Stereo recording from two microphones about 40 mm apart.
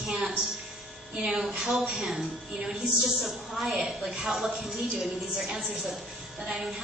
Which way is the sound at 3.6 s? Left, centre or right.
Centre.